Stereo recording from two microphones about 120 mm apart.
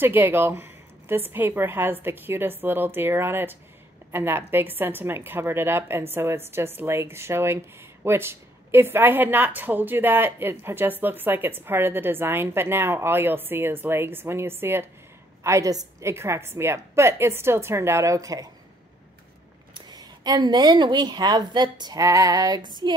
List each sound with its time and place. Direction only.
0.0 s a woman's voice: 15° right (ahead or behind)
19.7 s a woman's voice: 35° right (ahead or behind)